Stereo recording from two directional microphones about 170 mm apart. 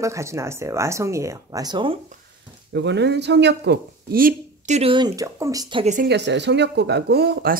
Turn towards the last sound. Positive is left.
turn(degrees=-70)  # may be behind; listen again after turning